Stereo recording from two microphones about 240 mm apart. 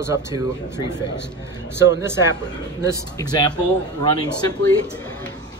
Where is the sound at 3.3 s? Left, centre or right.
Centre.